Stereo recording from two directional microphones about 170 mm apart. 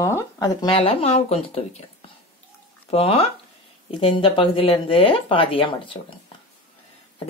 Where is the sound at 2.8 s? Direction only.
35° left (ahead or behind).